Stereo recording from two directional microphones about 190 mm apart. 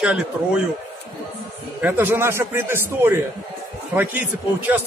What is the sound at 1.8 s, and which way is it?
A man's voice, 10° right (ahead or behind).